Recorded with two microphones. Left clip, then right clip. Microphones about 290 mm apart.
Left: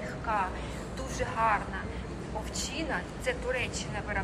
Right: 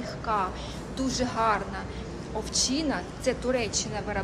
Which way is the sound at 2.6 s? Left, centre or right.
Centre.